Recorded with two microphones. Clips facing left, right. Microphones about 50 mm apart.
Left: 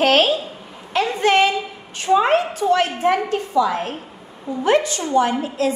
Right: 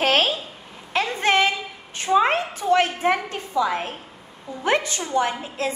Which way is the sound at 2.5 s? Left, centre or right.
Right.